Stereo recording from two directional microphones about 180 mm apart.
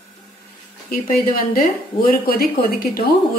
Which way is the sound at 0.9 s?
50° left (ahead or behind).